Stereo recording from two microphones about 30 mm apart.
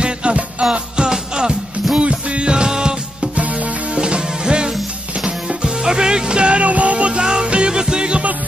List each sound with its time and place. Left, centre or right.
0.0 s music: right
0.7 s music: right
2.0 s music: right
2.5 s music: right
3.3 s music: right
3.9 s music: right
5.8 s music: right
6.6 s music: right
7.2 s music: right
7.4 s music: right
7.7 s music: right